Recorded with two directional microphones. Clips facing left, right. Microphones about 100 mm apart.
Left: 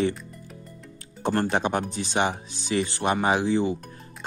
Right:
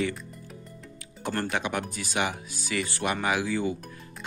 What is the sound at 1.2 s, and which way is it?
Speech, 30° left (ahead or behind).